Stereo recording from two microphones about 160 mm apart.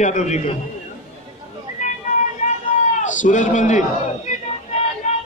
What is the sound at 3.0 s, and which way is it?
Speech, 50° left (ahead or behind).